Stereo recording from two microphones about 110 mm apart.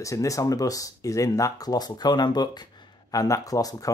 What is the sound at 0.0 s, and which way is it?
Speech, 30° left (ahead or behind).